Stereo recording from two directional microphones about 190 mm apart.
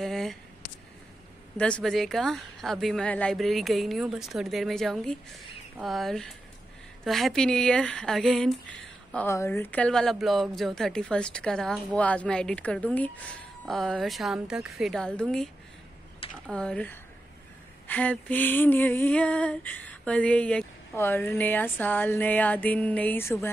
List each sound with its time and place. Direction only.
0.0 s a sound: centre (ahead or behind)
1.6 s speech: 5° left (ahead or behind)
17.8 s female singing: 5° left (ahead or behind)